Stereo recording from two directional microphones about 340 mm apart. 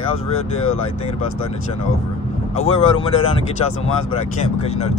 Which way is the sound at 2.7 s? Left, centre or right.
Centre.